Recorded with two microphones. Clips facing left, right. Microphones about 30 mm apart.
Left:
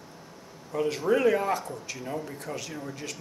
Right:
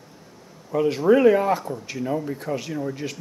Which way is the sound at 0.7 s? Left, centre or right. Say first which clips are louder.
Right 7 dB; centre.